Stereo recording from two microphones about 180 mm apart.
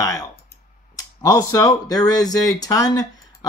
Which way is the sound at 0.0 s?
20° left (ahead or behind).